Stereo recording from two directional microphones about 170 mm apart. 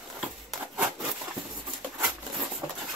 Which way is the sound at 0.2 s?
Centre (ahead or behind).